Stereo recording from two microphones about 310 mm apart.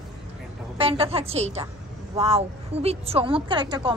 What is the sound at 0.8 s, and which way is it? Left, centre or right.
A woman's voice, centre.